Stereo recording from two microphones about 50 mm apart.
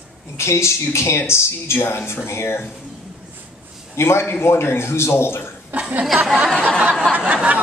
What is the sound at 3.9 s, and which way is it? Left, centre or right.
A man's voice, left.